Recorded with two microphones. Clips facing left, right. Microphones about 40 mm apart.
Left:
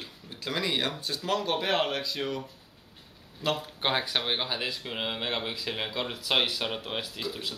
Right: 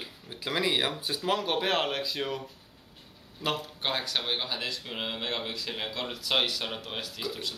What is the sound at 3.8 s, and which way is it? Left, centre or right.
Speech, centre.